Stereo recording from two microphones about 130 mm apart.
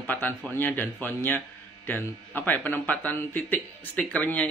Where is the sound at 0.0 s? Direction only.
15° left (ahead or behind).